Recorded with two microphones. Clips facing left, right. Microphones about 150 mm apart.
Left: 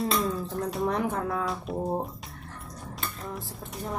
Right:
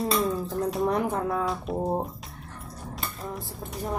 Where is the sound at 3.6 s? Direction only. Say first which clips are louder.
Right 6 dB; centre (ahead or behind).